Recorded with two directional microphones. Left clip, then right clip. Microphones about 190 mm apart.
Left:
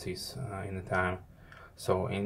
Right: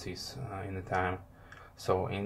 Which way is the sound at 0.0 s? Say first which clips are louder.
Left 2 dB; 10° left (ahead or behind).